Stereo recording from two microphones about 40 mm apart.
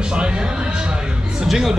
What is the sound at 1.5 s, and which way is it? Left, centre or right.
Speech, centre.